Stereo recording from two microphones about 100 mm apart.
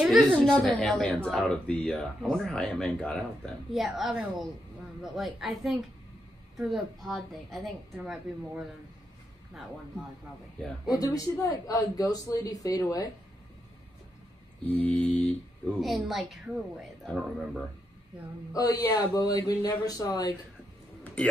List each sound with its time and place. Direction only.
0.4 s a woman's voice: 10° left (ahead or behind); by 8.6 s 10° right (ahead or behind)
10.9 s speech: 35° left (ahead or behind)
14.7 s speech: 15° left (ahead or behind)
15.6 s a woman's voice: centre (ahead or behind)
18.5 s speech: 40° left (ahead or behind)
21.0 s a sound: 10° left (ahead or behind)